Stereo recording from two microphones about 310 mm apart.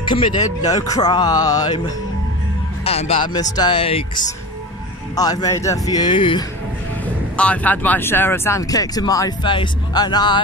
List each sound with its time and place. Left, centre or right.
0.0 s speech: centre
2.8 s speech: centre
7.3 s speech: centre